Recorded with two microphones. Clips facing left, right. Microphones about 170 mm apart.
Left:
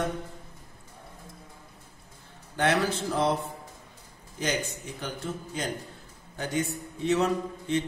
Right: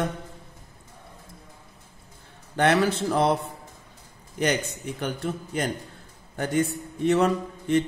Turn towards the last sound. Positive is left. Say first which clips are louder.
# right 4 dB
turn(degrees=-55)  # may be behind; listen again after turning